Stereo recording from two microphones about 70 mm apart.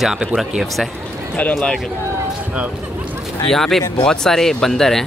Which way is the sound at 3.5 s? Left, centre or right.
Centre.